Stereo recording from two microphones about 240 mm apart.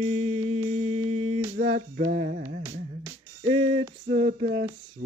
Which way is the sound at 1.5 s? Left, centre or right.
Right.